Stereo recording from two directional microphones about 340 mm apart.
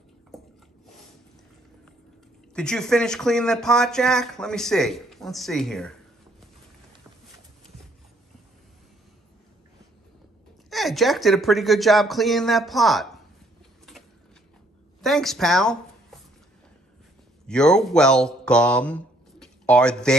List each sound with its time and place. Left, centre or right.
2.5 s speech: centre
10.7 s speech: centre
15.0 s speech: centre
17.5 s speech: centre